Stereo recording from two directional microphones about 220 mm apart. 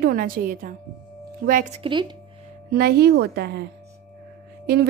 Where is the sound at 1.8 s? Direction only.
20° right (ahead or behind).